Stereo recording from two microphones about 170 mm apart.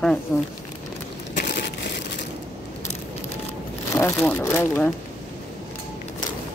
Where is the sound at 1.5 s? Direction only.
75° left (ahead or behind).